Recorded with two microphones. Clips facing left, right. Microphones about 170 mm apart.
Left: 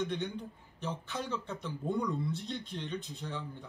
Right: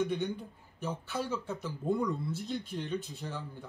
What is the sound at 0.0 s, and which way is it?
Speech, 5° right (ahead or behind).